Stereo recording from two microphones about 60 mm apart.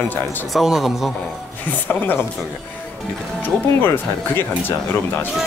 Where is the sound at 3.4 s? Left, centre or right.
Left.